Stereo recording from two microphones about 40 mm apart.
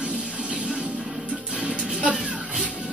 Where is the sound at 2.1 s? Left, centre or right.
Centre.